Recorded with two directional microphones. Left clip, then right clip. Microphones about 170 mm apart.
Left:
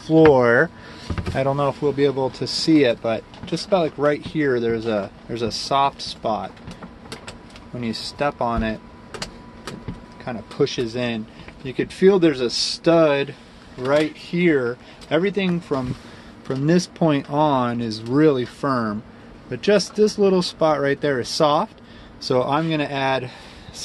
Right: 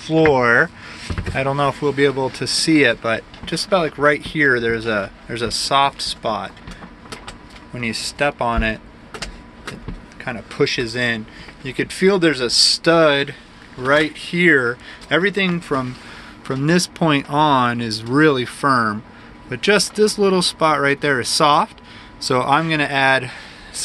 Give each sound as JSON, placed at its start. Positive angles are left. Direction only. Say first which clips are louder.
{"t": 0.0, "sound": "speech", "louder": "left 1 dB", "side_deg": 25}
{"t": 1.5, "sound": "speech", "louder": "right 3 dB", "side_deg": 5}
{"t": 7.8, "sound": "speech", "louder": "right 4 dB", "side_deg": 5}
{"t": 10.2, "sound": "speech", "louder": "right 3 dB", "side_deg": 5}